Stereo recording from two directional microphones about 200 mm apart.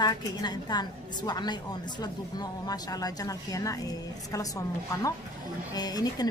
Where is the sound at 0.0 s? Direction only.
20° left (ahead or behind).